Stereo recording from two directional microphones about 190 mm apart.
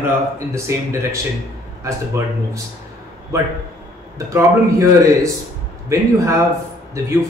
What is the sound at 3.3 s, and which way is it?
A man's voice, 15° right (ahead or behind).